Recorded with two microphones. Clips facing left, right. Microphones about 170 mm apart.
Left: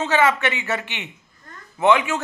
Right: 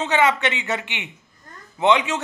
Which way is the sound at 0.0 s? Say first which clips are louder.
Even; 20° right (ahead or behind).